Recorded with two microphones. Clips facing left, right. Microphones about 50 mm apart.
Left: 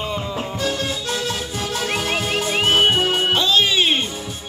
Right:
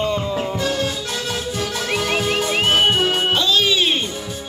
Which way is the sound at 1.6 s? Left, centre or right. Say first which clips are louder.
Even; left.